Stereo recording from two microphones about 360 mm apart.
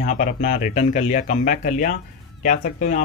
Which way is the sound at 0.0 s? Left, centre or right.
Left.